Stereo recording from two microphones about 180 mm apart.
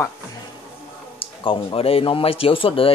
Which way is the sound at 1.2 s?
30° left (ahead or behind).